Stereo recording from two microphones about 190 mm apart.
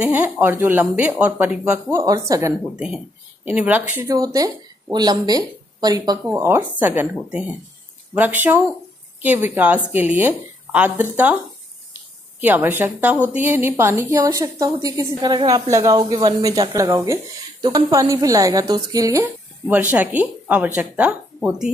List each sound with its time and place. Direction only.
0.0 s a woman's voice: 10° right (ahead or behind)
2.7 s a woman's voice: 5° right (ahead or behind)
12.4 s a woman's voice: 10° right (ahead or behind)